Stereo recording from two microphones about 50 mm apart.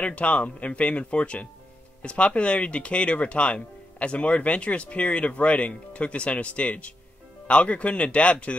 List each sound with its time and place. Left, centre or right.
0.0 s speech: left